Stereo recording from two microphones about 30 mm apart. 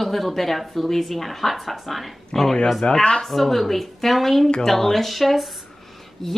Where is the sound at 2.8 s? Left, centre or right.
Left.